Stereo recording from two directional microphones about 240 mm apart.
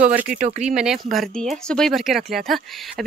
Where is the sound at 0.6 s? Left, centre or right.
Centre.